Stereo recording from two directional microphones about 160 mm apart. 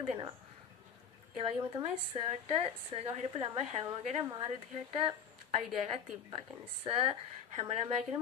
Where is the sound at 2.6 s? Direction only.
40° right (ahead or behind).